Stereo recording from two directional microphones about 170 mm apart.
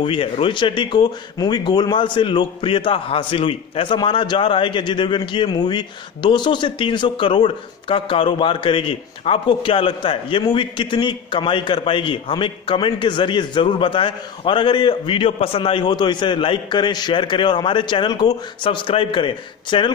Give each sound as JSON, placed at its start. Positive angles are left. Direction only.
{"t": 0.0, "sound": "speech", "side_deg": 30}